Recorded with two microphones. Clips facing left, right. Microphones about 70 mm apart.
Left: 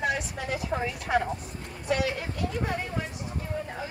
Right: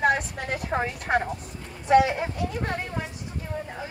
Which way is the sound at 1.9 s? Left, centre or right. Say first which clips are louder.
Right 9 dB; right.